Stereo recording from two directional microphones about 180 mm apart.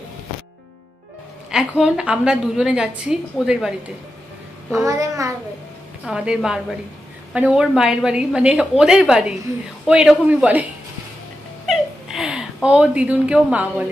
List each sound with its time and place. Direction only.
1.5 s a woman's voice: 5° right (ahead or behind)
4.8 s speech: 20° right (ahead or behind)
6.0 s a woman's voice: 5° right (ahead or behind)
11.6 s a sound: centre (ahead or behind)
12.6 s speech: 5° right (ahead or behind)